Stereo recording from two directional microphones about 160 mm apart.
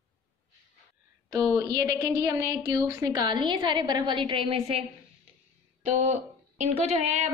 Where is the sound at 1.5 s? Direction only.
20° right (ahead or behind); by 4.8 s 35° right (ahead or behind).